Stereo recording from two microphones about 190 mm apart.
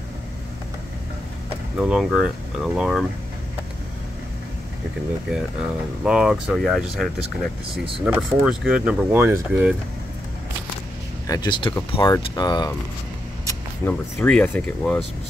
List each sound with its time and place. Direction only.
1.8 s speech: 5° right (ahead or behind)
5.3 s speech: 5° right (ahead or behind)
11.2 s speech: 20° left (ahead or behind)
13.8 s speech: 10° left (ahead or behind)